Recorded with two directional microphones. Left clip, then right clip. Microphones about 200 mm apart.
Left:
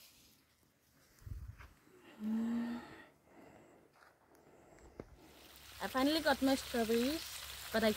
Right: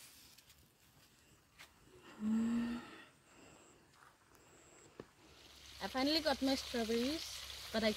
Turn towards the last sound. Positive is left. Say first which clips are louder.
# left 3 dB
turn(degrees=0)  # may be behind; listen again after turning